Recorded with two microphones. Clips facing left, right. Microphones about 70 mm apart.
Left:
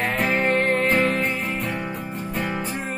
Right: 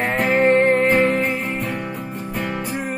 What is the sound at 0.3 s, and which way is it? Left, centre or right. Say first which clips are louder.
Music: right 8 dB; centre.